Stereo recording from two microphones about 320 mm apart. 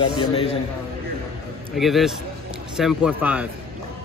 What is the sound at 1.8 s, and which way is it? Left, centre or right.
Speech, centre.